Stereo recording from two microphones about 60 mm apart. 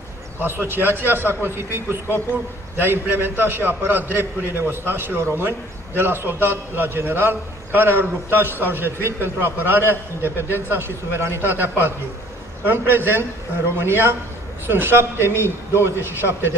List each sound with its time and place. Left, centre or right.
0.4 s a man's voice: right